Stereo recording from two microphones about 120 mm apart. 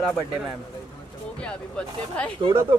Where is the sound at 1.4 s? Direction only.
10° left (ahead or behind).